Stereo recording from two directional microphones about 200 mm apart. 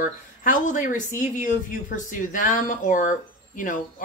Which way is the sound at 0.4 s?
40° left (ahead or behind).